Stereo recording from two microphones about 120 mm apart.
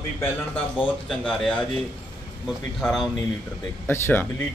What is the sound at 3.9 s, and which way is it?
Speech, 15° left (ahead or behind).